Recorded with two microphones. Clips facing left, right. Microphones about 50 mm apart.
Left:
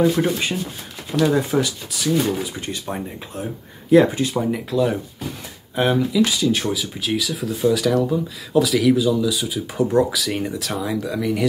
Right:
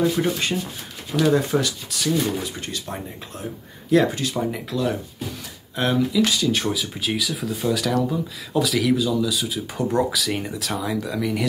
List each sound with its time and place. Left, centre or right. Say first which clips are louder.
0.2 s speech: left 2 dB; centre
2.6 s speech: left 3 dB; centre
4.4 s speech: left 5 dB; centre